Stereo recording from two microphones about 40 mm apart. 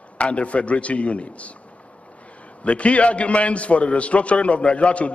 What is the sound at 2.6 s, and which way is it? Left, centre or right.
A man's voice, left.